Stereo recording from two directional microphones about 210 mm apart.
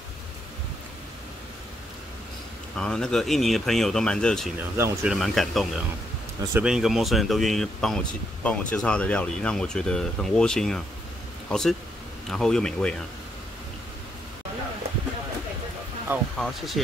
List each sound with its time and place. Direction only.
2.8 s speech: 5° left (ahead or behind)
4.6 s speech: 10° right (ahead or behind)
5.1 s speech: centre (ahead or behind)
16.3 s speech: centre (ahead or behind)